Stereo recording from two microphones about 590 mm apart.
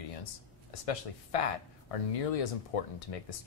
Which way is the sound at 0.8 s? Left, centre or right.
Left.